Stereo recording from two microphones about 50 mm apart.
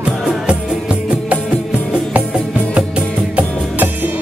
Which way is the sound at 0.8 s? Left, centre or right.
Centre.